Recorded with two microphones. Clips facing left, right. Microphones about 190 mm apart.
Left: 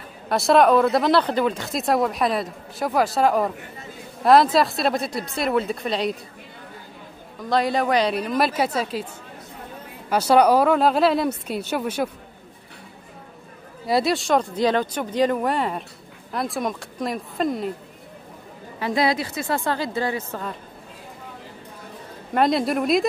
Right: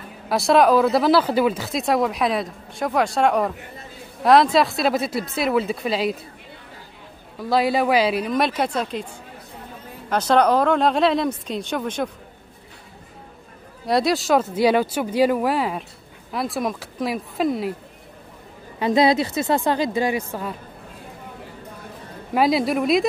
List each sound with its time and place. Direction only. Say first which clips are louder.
0.3 s speech: even; centre (ahead or behind)
7.4 s speech: right 2 dB; 5° right (ahead or behind)
10.0 s speech: left 1 dB; 10° left (ahead or behind)
13.8 s speech: right 1 dB; centre (ahead or behind)
18.8 s a woman's voice: right 5 dB; 20° right (ahead or behind)
22.3 s speech: right 1 dB; 5° right (ahead or behind)